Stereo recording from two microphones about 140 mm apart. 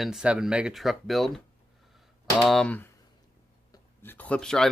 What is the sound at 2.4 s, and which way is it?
Speech, 5° left (ahead or behind).